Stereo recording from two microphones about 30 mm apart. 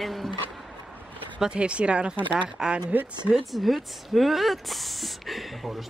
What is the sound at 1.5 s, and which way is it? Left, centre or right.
Speech, right.